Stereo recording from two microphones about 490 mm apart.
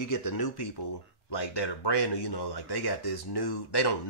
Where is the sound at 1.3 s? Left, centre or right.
Left.